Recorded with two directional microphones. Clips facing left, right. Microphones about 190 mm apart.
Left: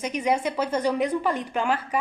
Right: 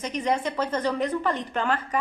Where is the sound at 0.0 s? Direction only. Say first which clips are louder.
Left 2 dB; 10° left (ahead or behind).